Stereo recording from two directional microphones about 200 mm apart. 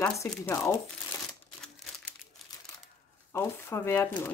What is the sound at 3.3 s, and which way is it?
Speech, 15° left (ahead or behind).